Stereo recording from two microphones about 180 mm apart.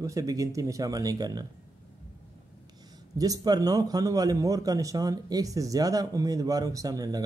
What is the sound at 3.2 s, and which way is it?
Speech, 20° right (ahead or behind).